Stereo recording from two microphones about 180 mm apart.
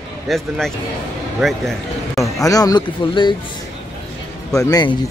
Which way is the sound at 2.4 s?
20° left (ahead or behind).